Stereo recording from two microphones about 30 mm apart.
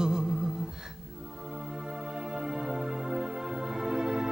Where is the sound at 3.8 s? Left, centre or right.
Right.